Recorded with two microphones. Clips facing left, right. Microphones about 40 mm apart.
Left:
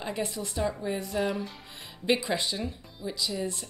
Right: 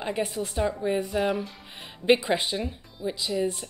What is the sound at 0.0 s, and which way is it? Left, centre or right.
Speech, right.